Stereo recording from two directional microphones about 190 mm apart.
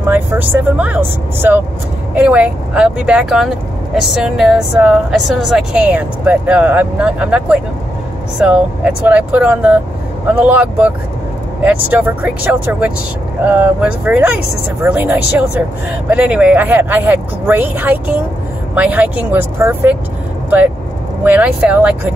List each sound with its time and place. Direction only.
0.1 s speech: 10° right (ahead or behind)